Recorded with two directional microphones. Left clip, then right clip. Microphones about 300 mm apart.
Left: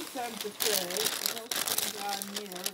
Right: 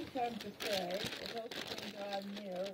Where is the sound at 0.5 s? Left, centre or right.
Left.